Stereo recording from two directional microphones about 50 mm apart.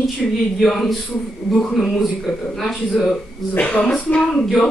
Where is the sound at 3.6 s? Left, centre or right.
Centre.